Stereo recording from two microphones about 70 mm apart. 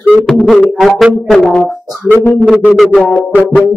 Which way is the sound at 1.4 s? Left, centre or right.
Centre.